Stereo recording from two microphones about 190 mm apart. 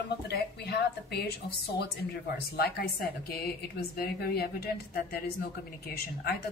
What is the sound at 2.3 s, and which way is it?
A woman's voice, 55° left (ahead or behind).